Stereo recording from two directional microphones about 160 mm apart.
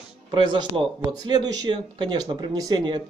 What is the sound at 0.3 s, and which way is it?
Speech, 30° right (ahead or behind).